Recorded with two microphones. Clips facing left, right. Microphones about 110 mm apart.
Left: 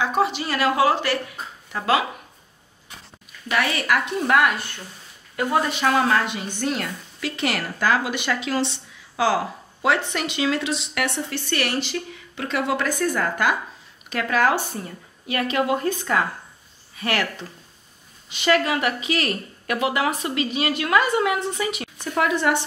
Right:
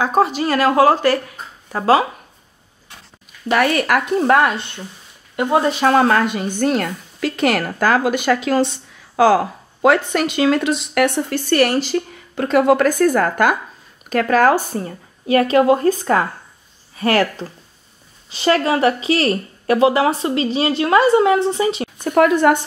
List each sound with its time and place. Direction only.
0.0 s a woman's voice: 40° right (ahead or behind)
3.4 s a woman's voice: 50° right (ahead or behind)
4.2 s speech: 35° right (ahead or behind)
5.8 s a woman's voice: 45° right (ahead or behind)
22.1 s a woman's voice: 50° right (ahead or behind)